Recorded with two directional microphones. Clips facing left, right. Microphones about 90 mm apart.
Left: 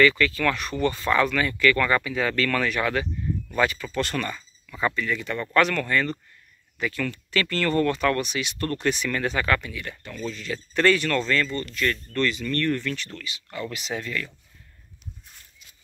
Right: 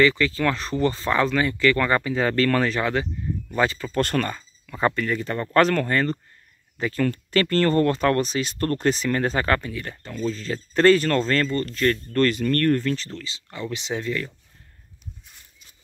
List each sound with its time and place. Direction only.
0.0 s speech: 25° right (ahead or behind)
3.9 s speech: 45° right (ahead or behind); by 14.3 s 25° right (ahead or behind)